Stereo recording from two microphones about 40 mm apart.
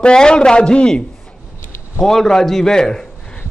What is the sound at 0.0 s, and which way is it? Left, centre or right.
A man's voice, left.